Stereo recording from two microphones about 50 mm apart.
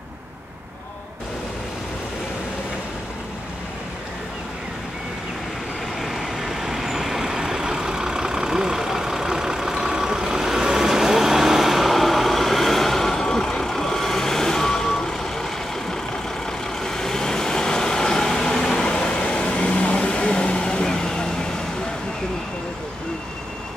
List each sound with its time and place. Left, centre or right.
5.9 s vehicle: centre